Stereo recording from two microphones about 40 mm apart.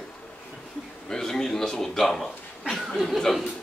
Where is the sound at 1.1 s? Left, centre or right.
Centre.